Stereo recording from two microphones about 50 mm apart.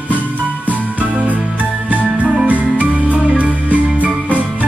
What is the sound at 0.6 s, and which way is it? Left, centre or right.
Jingle bell, right.